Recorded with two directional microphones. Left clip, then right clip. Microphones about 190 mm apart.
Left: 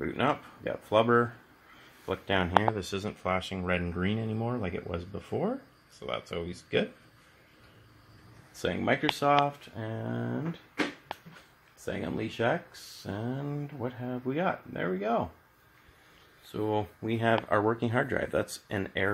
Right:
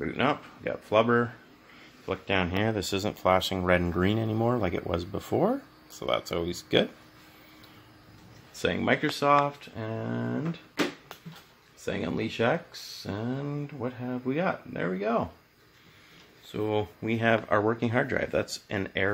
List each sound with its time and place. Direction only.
0.0 s speech: 10° left (ahead or behind)
2.7 s speech: 40° right (ahead or behind)
8.5 s speech: 5° right (ahead or behind)
11.8 s speech: 5° right (ahead or behind)
16.5 s speech: centre (ahead or behind)